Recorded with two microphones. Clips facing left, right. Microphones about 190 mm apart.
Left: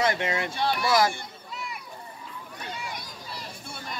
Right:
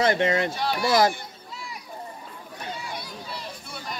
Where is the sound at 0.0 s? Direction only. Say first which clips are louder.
Right 5 dB; 30° right (ahead or behind).